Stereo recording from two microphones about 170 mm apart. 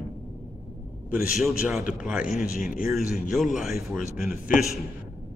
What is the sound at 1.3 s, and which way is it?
Speech, centre (ahead or behind).